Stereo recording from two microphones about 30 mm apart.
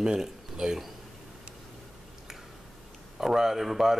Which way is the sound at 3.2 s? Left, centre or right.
Centre.